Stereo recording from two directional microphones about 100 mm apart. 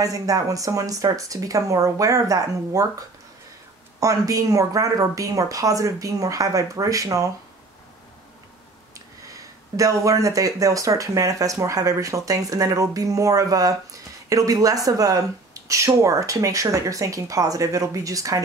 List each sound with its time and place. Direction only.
0.0 s speech: 35° right (ahead or behind)
8.9 s speech: 35° right (ahead or behind)